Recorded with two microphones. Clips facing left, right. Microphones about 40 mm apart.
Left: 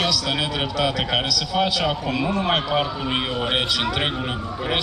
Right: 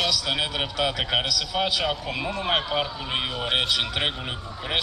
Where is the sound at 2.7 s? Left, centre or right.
Left.